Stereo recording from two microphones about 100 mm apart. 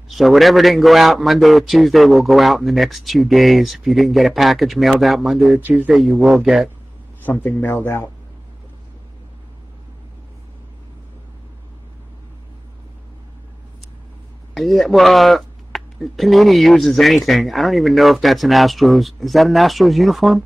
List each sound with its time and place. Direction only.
0.1 s speech: centre (ahead or behind)
5.6 s speech: 20° right (ahead or behind)
5.9 s speech: centre (ahead or behind)
7.4 s speech: 20° left (ahead or behind)
14.5 s speech: centre (ahead or behind)